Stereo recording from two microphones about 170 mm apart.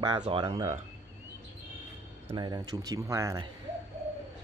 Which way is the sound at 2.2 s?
25° right (ahead or behind).